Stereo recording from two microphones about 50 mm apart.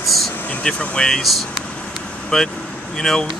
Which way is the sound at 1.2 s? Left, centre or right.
Centre.